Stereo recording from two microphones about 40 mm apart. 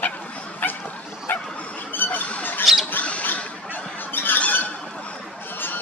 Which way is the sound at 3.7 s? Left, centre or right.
Left.